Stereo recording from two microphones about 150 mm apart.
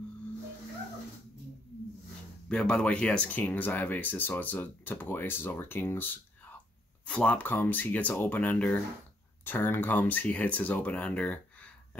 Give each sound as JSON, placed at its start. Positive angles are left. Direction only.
{"t": 2.4, "sound": "speech", "side_deg": 5}